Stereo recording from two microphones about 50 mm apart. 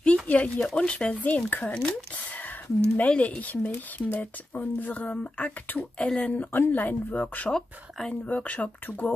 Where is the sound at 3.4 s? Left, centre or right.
Left; by 6.2 s centre.